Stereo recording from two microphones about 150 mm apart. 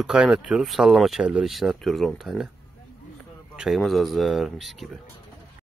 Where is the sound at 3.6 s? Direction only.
Centre (ahead or behind).